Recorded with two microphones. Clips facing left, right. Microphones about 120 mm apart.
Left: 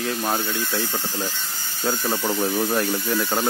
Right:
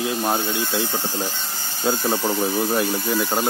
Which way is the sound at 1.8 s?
25° right (ahead or behind).